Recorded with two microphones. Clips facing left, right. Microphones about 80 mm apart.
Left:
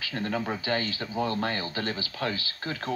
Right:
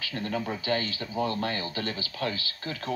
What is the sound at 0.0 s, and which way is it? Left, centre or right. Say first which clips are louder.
Speech: left 1 dB; left.